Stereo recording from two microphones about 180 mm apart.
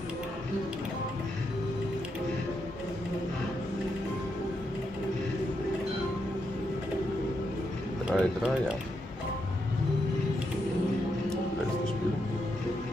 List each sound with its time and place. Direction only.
8.1 s speech: 5° right (ahead or behind)